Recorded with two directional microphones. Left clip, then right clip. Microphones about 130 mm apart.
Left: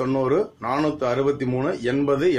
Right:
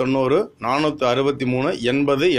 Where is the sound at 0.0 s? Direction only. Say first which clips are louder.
Right 3 dB; 20° right (ahead or behind).